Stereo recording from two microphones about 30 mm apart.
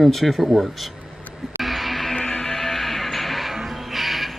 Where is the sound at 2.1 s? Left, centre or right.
Left.